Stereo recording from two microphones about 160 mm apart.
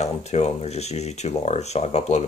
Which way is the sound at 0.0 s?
45° left (ahead or behind).